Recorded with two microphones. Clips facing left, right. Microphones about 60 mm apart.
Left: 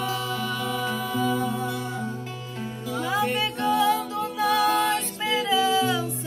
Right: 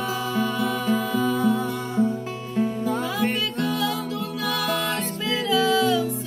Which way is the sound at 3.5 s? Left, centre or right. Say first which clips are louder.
Left 3 dB; left.